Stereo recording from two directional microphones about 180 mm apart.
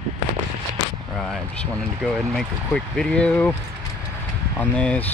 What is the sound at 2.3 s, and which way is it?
Speech, 5° left (ahead or behind).